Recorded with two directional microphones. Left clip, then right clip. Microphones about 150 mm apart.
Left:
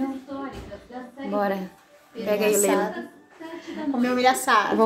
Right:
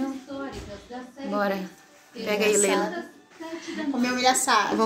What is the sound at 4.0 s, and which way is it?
Speech, 5° left (ahead or behind).